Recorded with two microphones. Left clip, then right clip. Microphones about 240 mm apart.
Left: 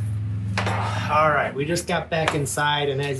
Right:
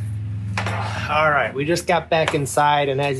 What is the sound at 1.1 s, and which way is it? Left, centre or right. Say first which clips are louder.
Speech: right 2 dB; right.